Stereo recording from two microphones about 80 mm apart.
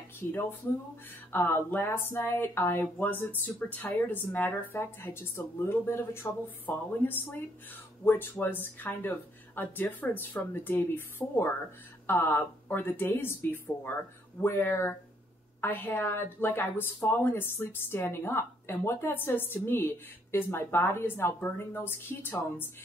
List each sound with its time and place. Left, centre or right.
0.2 s a woman's voice: left